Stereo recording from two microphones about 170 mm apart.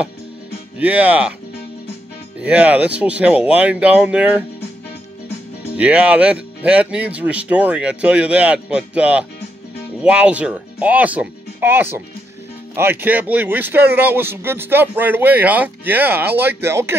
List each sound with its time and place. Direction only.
0.7 s speech: 10° right (ahead or behind)
2.4 s speech: 10° right (ahead or behind)
5.8 s speech: 5° right (ahead or behind)